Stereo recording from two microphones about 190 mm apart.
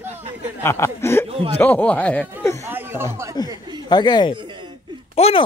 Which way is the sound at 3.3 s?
20° left (ahead or behind).